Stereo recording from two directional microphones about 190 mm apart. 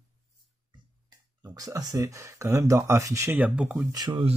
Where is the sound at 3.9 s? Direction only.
25° right (ahead or behind).